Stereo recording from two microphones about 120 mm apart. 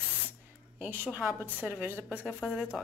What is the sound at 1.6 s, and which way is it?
Speech, 15° right (ahead or behind).